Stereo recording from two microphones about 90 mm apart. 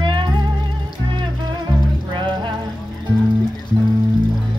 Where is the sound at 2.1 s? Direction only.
60° right (ahead or behind).